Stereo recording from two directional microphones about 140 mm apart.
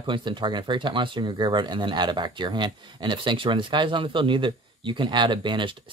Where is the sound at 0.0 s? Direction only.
35° right (ahead or behind).